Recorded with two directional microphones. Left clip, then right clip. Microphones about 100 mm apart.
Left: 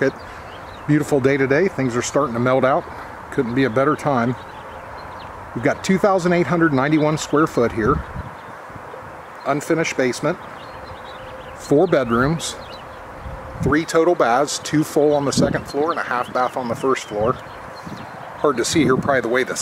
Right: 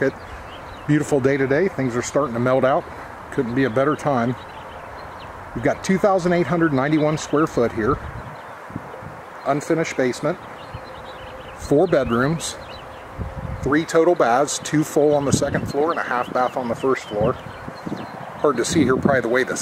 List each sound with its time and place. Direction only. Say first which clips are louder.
0.8 s speech: left 1 dB; 10° left (ahead or behind)
5.6 s speech: left 1 dB; 20° left (ahead or behind)
9.5 s speech: left 1 dB; 20° left (ahead or behind)
11.9 s speech: left 1 dB; 15° left (ahead or behind)
13.6 s speech: even; 20° left (ahead or behind)
18.4 s speech: left 1 dB; 15° left (ahead or behind)